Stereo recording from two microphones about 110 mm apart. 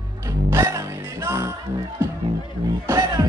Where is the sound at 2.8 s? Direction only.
30° right (ahead or behind).